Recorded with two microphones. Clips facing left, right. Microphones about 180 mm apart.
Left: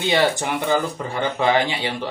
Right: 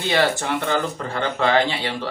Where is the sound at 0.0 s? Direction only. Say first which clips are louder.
Left 1 dB; 15° left (ahead or behind).